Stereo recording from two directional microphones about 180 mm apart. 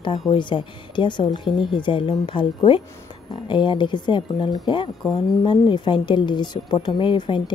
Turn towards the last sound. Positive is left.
turn(degrees=25)  # may be behind; listen again after turning